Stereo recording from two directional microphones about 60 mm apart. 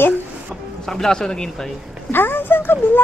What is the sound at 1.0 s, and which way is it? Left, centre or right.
Speech, centre.